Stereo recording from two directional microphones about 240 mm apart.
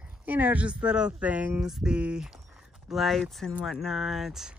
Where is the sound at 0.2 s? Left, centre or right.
Centre.